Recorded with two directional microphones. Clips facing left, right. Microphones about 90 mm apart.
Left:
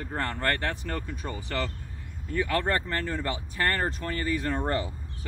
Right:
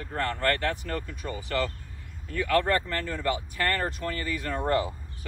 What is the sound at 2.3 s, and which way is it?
Speech, 25° left (ahead or behind).